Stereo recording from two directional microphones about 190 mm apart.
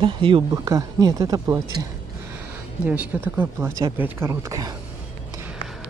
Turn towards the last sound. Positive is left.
turn(degrees=-20)  # may be behind; listen again after turning